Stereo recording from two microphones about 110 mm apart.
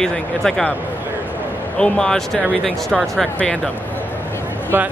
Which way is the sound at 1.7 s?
5° left (ahead or behind).